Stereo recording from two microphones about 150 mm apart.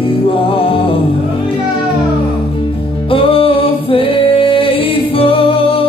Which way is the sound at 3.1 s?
35° left (ahead or behind).